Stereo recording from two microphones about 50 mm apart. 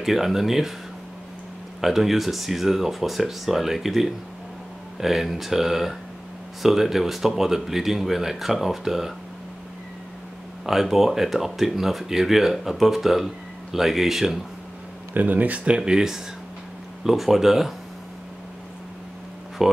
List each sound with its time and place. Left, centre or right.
0.0 s speech: centre
1.8 s speech: centre
10.6 s speech: centre
15.1 s speech: right; by 17.7 s centre
19.6 s speech: centre